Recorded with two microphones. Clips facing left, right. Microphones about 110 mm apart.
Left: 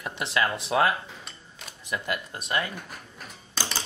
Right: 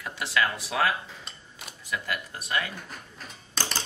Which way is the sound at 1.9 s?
20° left (ahead or behind).